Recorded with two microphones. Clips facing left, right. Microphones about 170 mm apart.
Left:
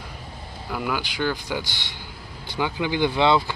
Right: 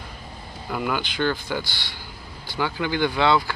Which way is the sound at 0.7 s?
Centre (ahead or behind).